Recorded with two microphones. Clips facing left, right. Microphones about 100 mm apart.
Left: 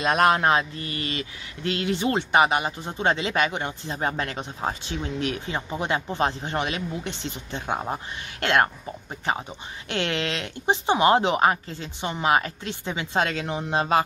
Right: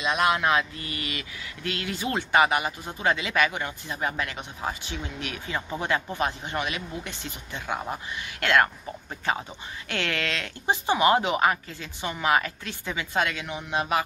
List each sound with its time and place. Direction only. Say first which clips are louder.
0.0 s speech: left 4 dB; 45° left (ahead or behind); by 8.6 s 25° left (ahead or behind)
9.8 s speech: left 3 dB; 20° left (ahead or behind)